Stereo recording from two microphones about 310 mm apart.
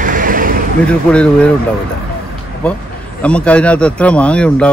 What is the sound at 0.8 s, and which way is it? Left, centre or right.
Speech, centre.